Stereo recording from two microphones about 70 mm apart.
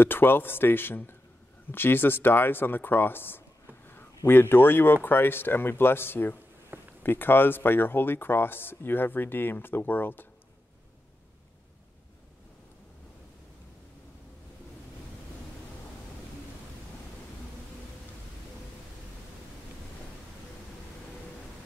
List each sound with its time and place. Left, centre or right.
0.0 s speech: left